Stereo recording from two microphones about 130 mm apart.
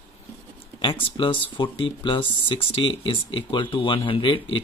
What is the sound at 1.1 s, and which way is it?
Speech, 40° left (ahead or behind).